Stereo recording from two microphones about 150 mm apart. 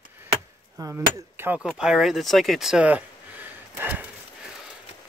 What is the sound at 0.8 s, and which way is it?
Speech, 20° right (ahead or behind).